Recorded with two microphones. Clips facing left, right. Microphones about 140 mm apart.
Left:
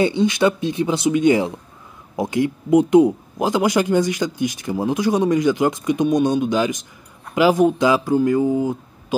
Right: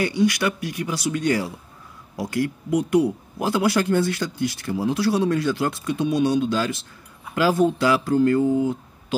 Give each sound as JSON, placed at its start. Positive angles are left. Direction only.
{"t": 0.0, "sound": "speech", "side_deg": 25}